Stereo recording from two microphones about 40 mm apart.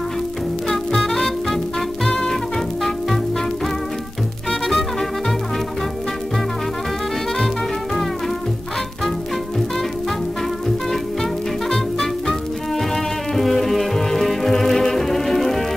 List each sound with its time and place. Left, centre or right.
0.7 s music: centre
7.4 s music: centre
11.7 s music: centre